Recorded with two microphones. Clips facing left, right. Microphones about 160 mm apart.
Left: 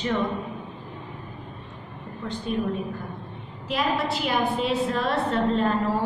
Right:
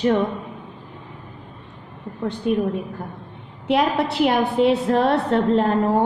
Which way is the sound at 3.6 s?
70° right (ahead or behind).